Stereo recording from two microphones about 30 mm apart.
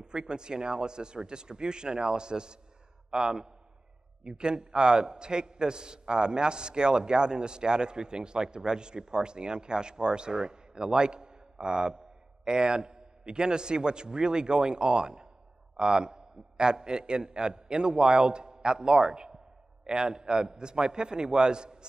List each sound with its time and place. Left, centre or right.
0.0 s a man's voice: right